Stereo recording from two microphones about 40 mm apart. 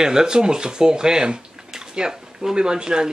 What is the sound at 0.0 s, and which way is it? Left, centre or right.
Speech, centre.